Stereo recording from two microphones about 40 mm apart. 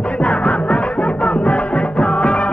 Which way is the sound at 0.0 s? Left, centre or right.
Left.